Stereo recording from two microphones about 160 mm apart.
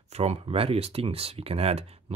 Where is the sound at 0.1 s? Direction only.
40° right (ahead or behind).